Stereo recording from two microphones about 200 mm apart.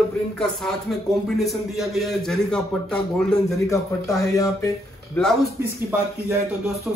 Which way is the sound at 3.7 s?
15° left (ahead or behind).